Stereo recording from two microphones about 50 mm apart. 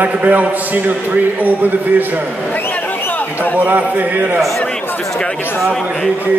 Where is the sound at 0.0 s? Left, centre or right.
Right.